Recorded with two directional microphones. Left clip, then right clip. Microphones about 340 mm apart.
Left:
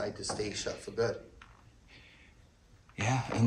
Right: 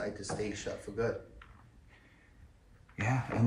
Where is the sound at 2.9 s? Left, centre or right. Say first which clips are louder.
Left 2 dB; centre.